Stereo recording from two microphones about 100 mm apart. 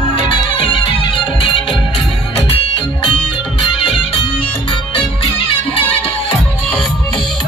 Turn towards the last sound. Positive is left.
turn(degrees=75)  # may be behind; listen again after turning